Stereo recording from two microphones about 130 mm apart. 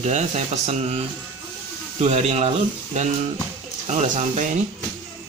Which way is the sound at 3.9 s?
65° right (ahead or behind).